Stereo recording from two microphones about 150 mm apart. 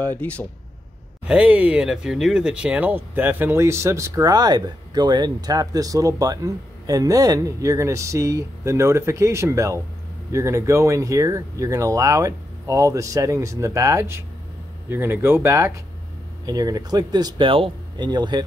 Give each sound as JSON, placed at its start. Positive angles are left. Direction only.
{"t": 0.0, "sound": "speech", "side_deg": 10}
{"t": 1.2, "sound": "speech", "side_deg": -5}